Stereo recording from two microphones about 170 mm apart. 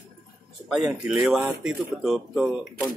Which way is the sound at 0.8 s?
5° right (ahead or behind).